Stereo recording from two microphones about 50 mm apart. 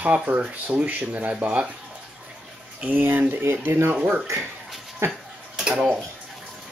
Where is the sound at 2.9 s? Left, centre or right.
Right.